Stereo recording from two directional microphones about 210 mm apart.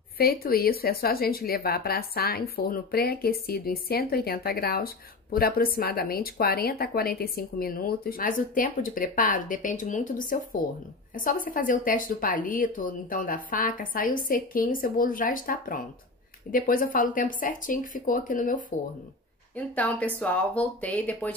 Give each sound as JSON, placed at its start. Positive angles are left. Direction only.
{"t": 0.2, "sound": "a woman's voice", "side_deg": 45}
{"t": 19.5, "sound": "speech", "side_deg": 5}